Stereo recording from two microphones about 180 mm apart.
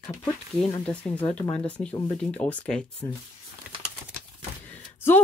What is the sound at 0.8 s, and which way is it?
Speech, 5° left (ahead or behind).